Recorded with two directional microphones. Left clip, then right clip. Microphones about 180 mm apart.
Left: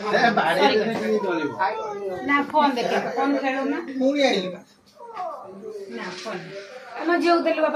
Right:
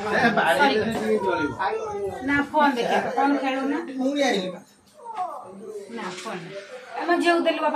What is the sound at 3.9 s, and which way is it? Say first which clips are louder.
Speech: left 5 dB; 20° right (ahead or behind).